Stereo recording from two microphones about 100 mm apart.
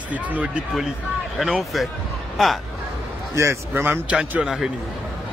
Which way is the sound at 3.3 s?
30° right (ahead or behind).